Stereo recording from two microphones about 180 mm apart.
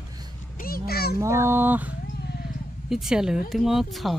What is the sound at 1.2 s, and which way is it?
Speech, 15° right (ahead or behind).